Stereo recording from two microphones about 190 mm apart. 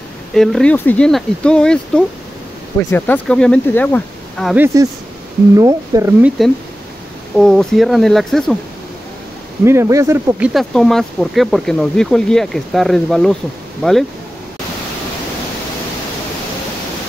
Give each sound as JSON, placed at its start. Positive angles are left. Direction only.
{"t": 0.3, "sound": "speech", "side_deg": 0}
{"t": 2.8, "sound": "speech", "side_deg": 15}
{"t": 3.3, "sound": "speech", "side_deg": 5}
{"t": 5.6, "sound": "speech", "side_deg": -20}
{"t": 6.2, "sound": "speech", "side_deg": 0}
{"t": 9.7, "sound": "speech", "side_deg": -15}
{"t": 10.4, "sound": "speech", "side_deg": 0}